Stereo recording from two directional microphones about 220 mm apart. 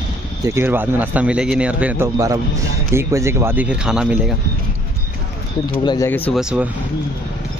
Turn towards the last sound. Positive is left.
turn(degrees=-5)  # may be behind; listen again after turning